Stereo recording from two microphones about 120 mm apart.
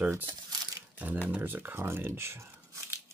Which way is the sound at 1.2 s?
15° right (ahead or behind).